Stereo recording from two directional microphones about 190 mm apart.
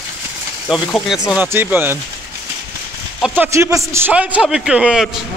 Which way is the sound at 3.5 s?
15° right (ahead or behind).